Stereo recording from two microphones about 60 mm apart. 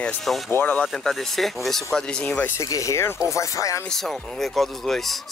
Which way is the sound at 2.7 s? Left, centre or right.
Left.